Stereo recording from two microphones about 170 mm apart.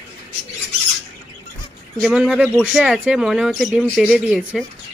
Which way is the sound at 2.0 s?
Centre (ahead or behind).